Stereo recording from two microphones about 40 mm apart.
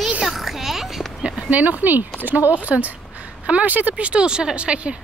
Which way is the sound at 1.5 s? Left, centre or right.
Right.